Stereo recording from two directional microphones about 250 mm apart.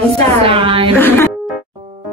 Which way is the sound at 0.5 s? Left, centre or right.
Right.